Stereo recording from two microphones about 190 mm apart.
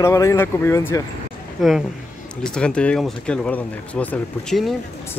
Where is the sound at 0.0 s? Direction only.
15° left (ahead or behind).